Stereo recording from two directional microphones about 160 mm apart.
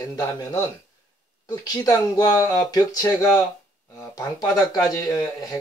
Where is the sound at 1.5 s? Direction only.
25° left (ahead or behind).